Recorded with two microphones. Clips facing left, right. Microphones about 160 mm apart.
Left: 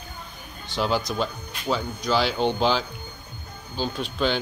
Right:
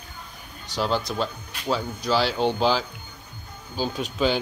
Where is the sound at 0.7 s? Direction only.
Centre (ahead or behind).